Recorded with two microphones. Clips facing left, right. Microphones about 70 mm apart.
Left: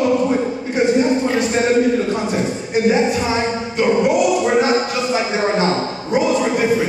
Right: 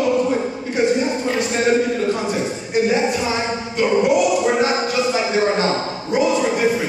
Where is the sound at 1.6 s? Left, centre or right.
Centre.